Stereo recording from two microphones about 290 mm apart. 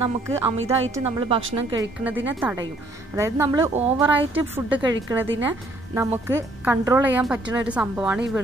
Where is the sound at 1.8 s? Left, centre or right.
Centre.